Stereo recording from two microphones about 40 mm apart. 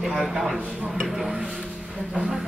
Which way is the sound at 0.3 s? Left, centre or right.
Centre.